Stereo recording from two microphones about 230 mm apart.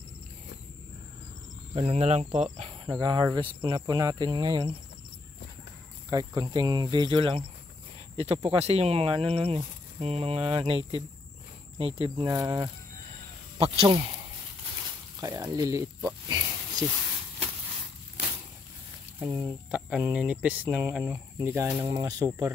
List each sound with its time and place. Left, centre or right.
1.8 s speech: right
6.0 s speech: centre
11.8 s speech: right
15.1 s speech: centre
19.1 s speech: centre